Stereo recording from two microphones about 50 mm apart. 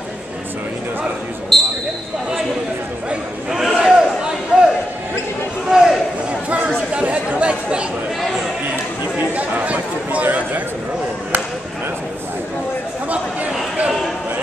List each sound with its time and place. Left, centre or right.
1.5 s basketball bounce: centre
3.4 s crowd: centre
5.7 s a sound: centre
7.0 s chatter: right
9.3 s chatter: right
10.2 s a sound: right